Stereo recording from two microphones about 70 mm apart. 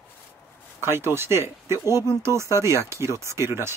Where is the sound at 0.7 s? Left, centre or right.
Right.